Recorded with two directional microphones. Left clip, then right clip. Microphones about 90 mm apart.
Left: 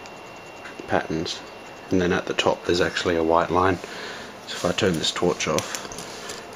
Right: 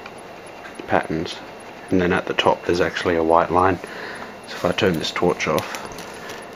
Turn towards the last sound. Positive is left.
turn(degrees=15)  # may be behind; listen again after turning